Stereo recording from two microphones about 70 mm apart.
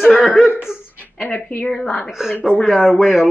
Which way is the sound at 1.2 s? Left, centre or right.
Left.